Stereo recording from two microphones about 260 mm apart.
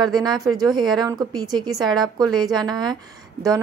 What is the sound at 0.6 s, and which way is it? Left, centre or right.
A woman's voice, centre.